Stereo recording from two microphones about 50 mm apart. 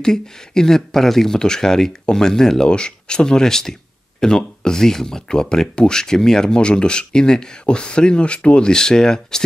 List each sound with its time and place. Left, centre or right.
0.0 s speech: centre